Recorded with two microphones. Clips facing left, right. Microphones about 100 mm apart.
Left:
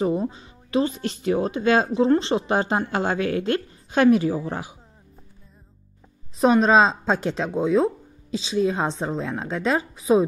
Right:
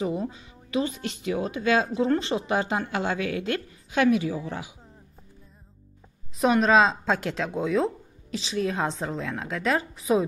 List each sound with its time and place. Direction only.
0.0 s a woman's voice: 35° left (ahead or behind)
6.4 s a woman's voice: 30° left (ahead or behind)